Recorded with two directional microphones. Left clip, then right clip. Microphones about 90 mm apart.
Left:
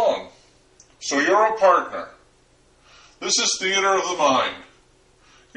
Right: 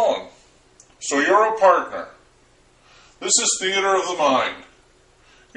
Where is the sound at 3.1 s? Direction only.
5° right (ahead or behind).